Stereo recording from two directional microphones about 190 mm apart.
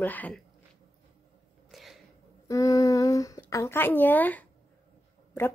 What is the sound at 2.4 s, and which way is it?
Speech, 15° left (ahead or behind).